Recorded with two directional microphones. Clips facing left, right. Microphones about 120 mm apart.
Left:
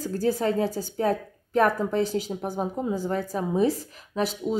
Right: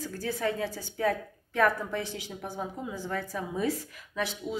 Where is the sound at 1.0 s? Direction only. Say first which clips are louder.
Left 3 dB; 25° left (ahead or behind).